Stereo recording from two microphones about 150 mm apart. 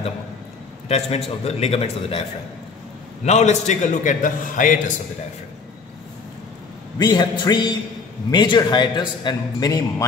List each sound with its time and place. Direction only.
0.8 s a man's voice: 45° left (ahead or behind)
3.3 s a man's voice: 50° left (ahead or behind)
7.0 s a man's voice: 30° left (ahead or behind)